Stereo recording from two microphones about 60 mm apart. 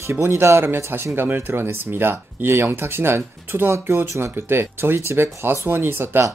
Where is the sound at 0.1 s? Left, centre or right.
Right.